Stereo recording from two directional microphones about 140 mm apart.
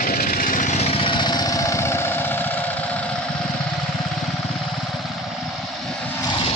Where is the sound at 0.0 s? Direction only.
90° left; by 3.1 s 10° left (ahead or behind).